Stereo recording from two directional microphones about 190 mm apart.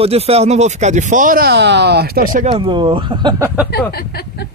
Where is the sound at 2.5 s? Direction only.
25° right (ahead or behind).